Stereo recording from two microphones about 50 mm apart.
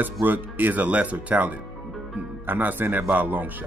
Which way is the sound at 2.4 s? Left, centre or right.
Right.